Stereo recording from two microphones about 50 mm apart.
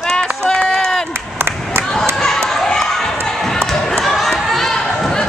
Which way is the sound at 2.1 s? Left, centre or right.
Centre.